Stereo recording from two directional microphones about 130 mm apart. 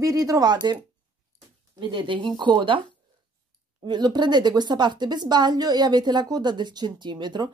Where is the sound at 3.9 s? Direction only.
35° right (ahead or behind).